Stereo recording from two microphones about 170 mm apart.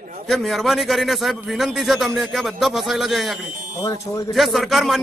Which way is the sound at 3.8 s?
20° left (ahead or behind).